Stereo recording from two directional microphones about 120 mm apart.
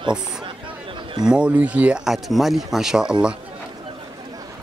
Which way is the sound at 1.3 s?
10° right (ahead or behind).